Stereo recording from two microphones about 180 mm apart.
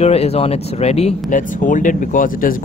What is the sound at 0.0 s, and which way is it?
Speech, 35° left (ahead or behind).